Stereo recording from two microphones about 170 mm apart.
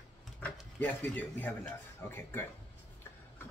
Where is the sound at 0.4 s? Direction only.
10° left (ahead or behind).